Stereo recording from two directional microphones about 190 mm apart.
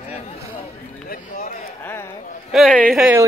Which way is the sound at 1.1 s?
45° left (ahead or behind).